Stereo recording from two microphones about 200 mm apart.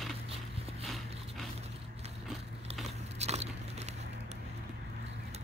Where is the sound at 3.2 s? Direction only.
35° right (ahead or behind).